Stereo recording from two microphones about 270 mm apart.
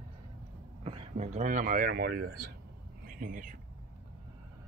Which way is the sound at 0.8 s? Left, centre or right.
Centre.